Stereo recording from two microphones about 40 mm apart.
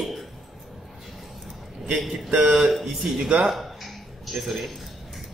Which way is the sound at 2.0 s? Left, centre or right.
Centre.